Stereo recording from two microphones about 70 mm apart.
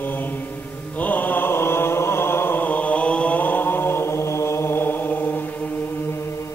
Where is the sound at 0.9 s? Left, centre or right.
Left.